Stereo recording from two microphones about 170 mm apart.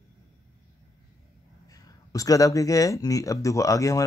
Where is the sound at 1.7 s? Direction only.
20° left (ahead or behind).